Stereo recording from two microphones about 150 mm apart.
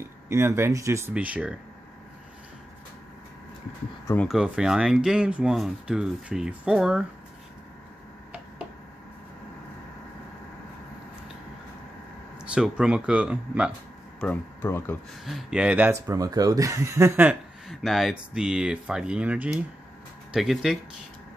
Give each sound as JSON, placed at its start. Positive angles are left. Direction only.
{"t": 0.0, "sound": "speech", "side_deg": -20}
{"t": 1.1, "sound": "speech", "side_deg": -10}
{"t": 4.3, "sound": "speech", "side_deg": -5}
{"t": 12.4, "sound": "speech", "side_deg": -5}
{"t": 14.2, "sound": "speech", "side_deg": 15}
{"t": 15.2, "sound": "speech", "side_deg": -5}
{"t": 16.1, "sound": "speech", "side_deg": -25}
{"t": 17.6, "sound": "speech", "side_deg": 0}